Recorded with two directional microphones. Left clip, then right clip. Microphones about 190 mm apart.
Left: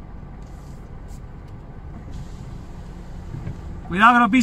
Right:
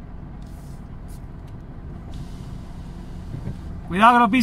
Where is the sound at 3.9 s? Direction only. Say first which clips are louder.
Even; 35° right (ahead or behind).